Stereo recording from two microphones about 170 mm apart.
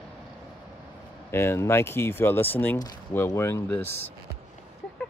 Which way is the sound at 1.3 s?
15° left (ahead or behind).